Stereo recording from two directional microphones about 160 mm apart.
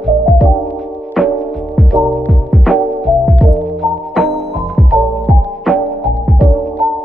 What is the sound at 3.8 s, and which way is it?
Music, centre (ahead or behind).